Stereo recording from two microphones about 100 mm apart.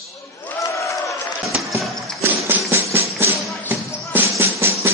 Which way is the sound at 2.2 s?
25° right (ahead or behind).